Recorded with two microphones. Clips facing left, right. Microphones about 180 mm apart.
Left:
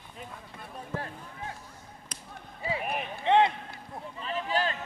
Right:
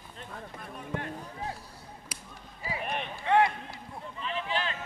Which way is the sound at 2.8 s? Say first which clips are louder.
Left 1 dB; 5° left (ahead or behind).